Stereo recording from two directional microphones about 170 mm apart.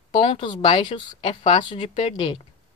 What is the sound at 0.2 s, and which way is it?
A woman's voice, 30° left (ahead or behind).